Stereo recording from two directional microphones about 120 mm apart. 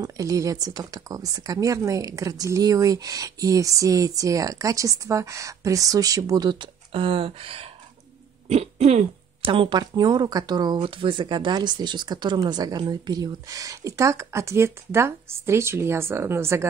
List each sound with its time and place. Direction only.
0.0 s speech: 30° right (ahead or behind); by 7.7 s 50° right (ahead or behind)
8.5 s throat clearing: 65° right (ahead or behind)
9.5 s speech: 45° right (ahead or behind); by 16.6 s 20° right (ahead or behind)